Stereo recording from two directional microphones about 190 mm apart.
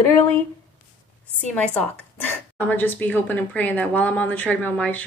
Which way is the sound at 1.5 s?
5° left (ahead or behind).